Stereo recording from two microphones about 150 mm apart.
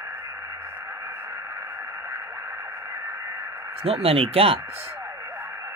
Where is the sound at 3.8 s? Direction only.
40° right (ahead or behind).